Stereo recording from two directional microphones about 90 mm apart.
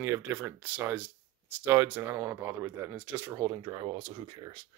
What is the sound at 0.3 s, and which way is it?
Speech, 20° right (ahead or behind).